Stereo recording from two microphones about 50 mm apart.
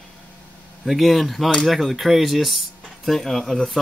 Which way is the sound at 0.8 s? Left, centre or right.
Centre.